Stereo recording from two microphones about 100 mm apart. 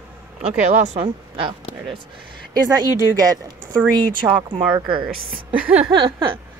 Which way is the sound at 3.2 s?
35° right (ahead or behind).